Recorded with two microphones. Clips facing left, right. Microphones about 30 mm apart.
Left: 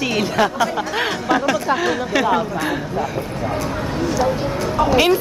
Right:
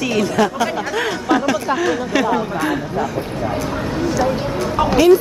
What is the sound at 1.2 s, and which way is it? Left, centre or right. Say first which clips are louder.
A woman's voice: right 1 dB; centre.